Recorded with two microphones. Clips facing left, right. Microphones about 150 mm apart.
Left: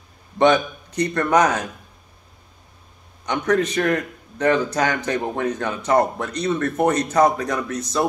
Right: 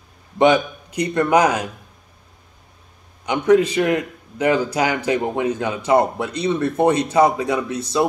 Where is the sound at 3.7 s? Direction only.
10° right (ahead or behind).